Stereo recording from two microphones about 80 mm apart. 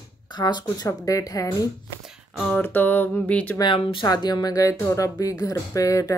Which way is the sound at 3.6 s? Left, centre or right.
Left.